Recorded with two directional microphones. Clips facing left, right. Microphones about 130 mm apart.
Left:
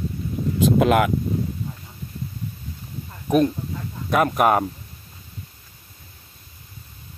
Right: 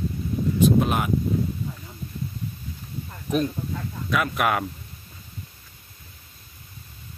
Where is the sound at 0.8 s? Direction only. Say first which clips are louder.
Left 7 dB; 90° left.